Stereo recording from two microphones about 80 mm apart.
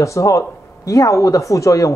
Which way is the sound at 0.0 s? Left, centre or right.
Left.